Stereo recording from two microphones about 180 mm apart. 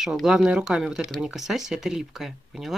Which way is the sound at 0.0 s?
Centre (ahead or behind).